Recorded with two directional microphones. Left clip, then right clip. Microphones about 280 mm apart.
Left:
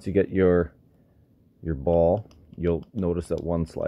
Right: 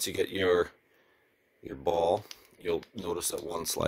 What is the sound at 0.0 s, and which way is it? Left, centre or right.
Speech, right.